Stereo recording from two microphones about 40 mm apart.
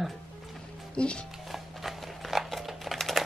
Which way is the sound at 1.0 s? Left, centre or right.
Left.